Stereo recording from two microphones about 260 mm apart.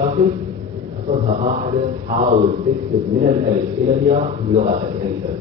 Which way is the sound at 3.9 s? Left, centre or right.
Right.